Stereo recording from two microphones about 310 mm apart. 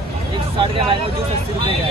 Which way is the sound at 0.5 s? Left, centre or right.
Centre.